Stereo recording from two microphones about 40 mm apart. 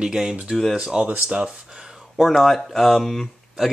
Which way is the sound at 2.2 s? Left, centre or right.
Centre.